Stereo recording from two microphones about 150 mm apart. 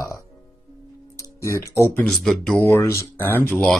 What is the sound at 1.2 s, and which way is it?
Speech, 20° left (ahead or behind).